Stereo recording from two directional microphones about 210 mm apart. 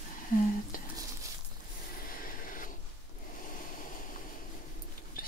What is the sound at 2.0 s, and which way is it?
Train, 40° left (ahead or behind).